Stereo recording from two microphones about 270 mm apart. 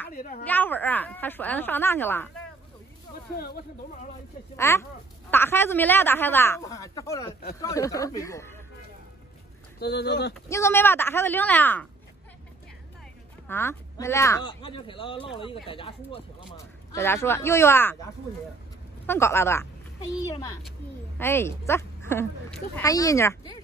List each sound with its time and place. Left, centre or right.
0.1 s speech: left
0.5 s speech: centre
3.3 s speech: left
4.6 s speech: centre
9.8 s speech: left
10.5 s speech: centre
13.5 s a woman's voice: centre